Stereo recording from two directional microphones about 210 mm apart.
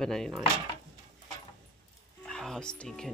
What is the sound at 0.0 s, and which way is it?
Speech, centre (ahead or behind).